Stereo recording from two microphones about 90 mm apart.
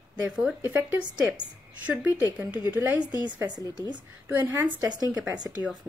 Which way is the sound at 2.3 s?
20° right (ahead or behind).